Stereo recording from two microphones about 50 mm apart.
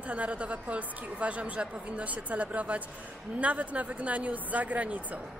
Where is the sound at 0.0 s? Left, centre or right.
Right.